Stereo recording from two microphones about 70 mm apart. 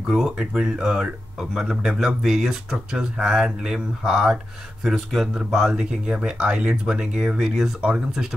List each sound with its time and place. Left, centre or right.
0.6 s speech: centre
5.7 s speech: centre